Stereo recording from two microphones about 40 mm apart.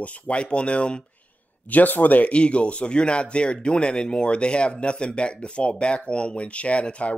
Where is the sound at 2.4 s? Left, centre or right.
Left.